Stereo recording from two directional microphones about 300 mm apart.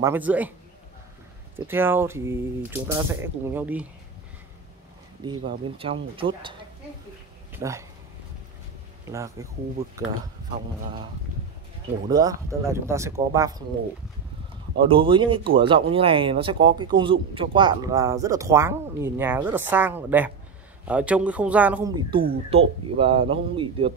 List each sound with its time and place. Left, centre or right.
0.0 s a man's voice: centre
1.7 s speech: centre
5.2 s speech: centre
7.5 s speech: centre
9.0 s speech: centre
12.1 s speech: centre
14.8 s a man's voice: centre
22.1 s speech: centre